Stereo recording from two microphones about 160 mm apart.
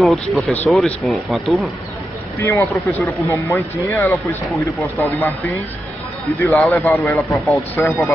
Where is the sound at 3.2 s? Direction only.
20° left (ahead or behind).